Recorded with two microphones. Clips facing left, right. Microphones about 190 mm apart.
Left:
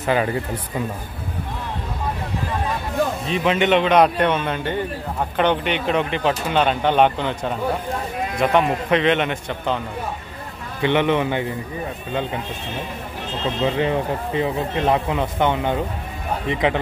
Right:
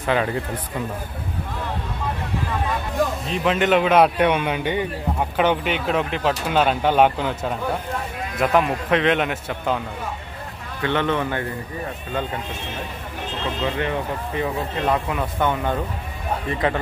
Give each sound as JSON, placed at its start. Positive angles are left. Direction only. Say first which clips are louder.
{"t": 0.0, "sound": "speech", "louder": "left 1 dB", "side_deg": 5}
{"t": 3.3, "sound": "speech", "louder": "left 2 dB", "side_deg": 0}
{"t": 10.8, "sound": "a man's voice", "louder": "left 3 dB", "side_deg": 15}
{"t": 13.7, "sound": "speech", "louder": "left 5 dB", "side_deg": 25}